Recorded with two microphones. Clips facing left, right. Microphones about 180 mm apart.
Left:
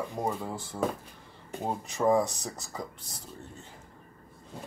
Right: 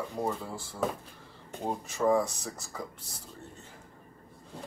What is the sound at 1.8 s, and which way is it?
Speech, 20° left (ahead or behind).